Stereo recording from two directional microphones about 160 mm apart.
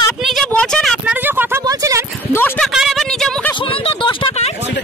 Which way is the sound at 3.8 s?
35° left (ahead or behind).